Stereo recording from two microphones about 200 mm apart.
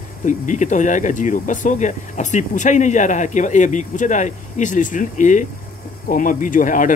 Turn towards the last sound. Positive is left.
turn(degrees=40)  # may be behind; listen again after turning